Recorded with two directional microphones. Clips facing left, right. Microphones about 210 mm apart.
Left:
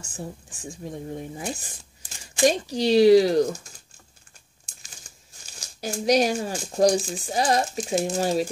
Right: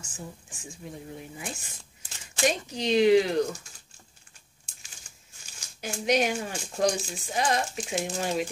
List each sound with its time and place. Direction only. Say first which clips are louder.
0.1 s speech: left 6 dB; 35° left (ahead or behind)
5.6 s speech: left 5 dB; 40° left (ahead or behind)